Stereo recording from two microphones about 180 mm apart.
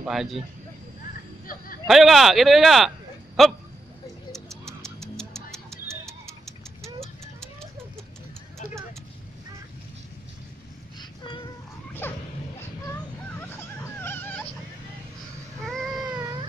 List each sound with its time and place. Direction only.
0.0 s speech: centre (ahead or behind)
1.9 s speech: centre (ahead or behind)
4.3 s music: 5° left (ahead or behind)
11.0 s child singing: 25° left (ahead or behind)
12.0 s a sound: 10° left (ahead or behind)
12.5 s dog: 10° left (ahead or behind)